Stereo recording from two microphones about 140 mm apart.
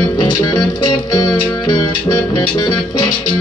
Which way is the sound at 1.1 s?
25° left (ahead or behind).